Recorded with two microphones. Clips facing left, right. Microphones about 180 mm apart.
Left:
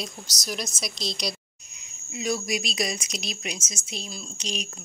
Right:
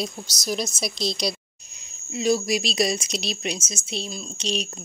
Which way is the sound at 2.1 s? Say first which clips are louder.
Right 6 dB; 30° right (ahead or behind).